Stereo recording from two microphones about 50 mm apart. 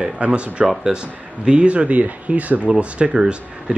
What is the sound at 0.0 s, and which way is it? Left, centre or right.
Speech, right.